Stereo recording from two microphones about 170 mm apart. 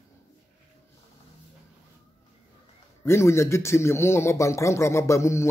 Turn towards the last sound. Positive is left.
turn(degrees=15)  # may be behind; listen again after turning